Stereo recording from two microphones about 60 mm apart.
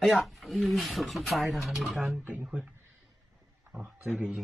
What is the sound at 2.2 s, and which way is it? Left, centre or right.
Speech, right.